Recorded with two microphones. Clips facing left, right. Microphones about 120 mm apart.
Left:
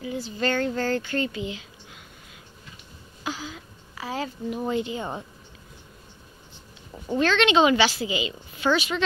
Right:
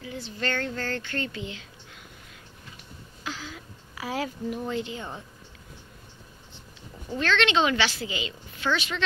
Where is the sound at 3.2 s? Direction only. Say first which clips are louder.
Left 4 dB; 10° left (ahead or behind).